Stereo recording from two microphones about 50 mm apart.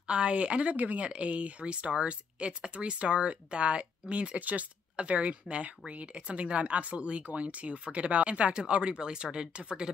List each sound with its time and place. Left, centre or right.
0.0 s speech: right